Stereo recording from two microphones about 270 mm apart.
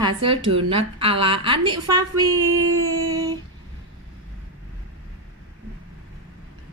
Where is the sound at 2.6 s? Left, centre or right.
Right.